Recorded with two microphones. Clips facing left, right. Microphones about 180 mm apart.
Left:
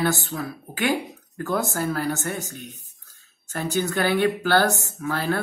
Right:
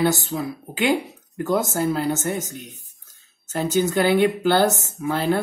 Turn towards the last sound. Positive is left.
turn(degrees=-20)  # may be behind; listen again after turning